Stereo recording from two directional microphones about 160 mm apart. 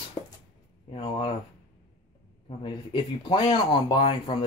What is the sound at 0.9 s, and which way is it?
Speech, 35° left (ahead or behind).